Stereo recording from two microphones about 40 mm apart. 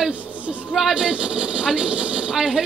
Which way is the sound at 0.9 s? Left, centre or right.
Right.